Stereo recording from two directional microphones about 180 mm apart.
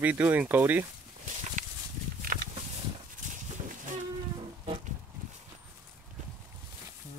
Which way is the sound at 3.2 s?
45° right (ahead or behind).